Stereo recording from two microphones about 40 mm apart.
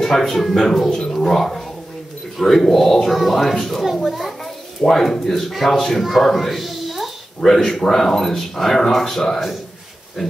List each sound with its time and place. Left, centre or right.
0.0 s speech: centre
0.8 s speech: centre
1.1 s speech: centre
6.2 s a sound: centre
7.3 s speech: centre